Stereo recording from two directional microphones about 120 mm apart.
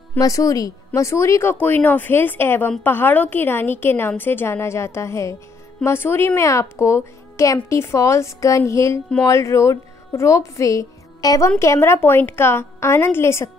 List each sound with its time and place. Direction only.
0.2 s a woman's voice: 30° left (ahead or behind)